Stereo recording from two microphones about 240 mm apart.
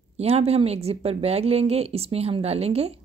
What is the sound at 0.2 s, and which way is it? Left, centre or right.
A woman's voice, right.